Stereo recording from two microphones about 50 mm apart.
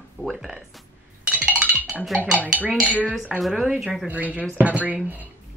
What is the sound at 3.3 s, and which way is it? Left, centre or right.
Speech, centre.